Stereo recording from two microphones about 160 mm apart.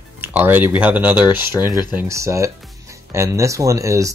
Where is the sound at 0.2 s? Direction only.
10° right (ahead or behind).